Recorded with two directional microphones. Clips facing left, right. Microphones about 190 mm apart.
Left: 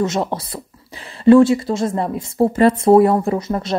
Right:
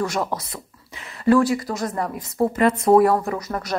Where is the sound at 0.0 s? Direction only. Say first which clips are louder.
Left 4 dB; 25° left (ahead or behind).